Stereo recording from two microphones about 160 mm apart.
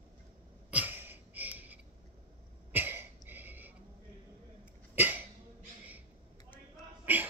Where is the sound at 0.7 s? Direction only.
10° right (ahead or behind).